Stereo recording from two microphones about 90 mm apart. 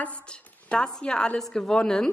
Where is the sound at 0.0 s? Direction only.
15° left (ahead or behind).